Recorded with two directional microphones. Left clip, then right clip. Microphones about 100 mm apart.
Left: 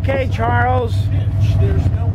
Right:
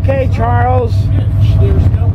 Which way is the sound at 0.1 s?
10° left (ahead or behind).